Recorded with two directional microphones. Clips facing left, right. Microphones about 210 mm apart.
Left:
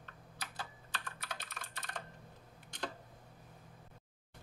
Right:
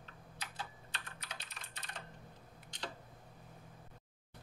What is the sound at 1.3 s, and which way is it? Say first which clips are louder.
Computer keyboard: left 3 dB; 55° left (ahead or behind).